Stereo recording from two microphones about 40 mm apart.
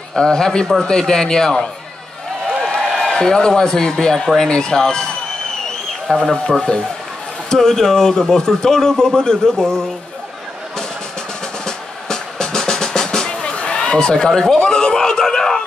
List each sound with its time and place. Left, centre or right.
0.1 s speech: centre
2.4 s a sound: centre
3.0 s speech: centre
6.2 s speech: centre
11.6 s music: centre
13.4 s speech: left; by 15.6 s centre